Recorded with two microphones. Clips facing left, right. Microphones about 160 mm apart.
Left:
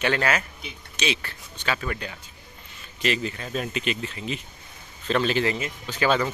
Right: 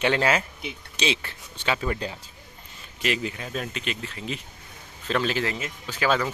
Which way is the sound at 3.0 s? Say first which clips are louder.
Left 1 dB; 10° right (ahead or behind).